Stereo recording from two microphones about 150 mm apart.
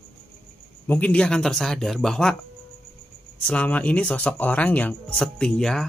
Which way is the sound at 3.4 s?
10° left (ahead or behind).